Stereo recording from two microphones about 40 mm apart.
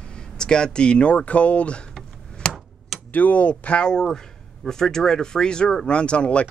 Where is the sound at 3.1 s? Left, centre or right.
Left.